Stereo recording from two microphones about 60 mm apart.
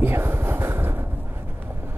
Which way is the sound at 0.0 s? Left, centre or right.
Right.